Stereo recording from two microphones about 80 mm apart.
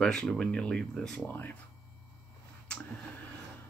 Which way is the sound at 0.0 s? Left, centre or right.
Centre.